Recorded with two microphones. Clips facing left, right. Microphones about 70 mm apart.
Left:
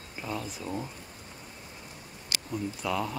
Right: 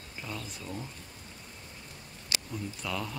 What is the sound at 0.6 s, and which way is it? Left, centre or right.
Speech, left.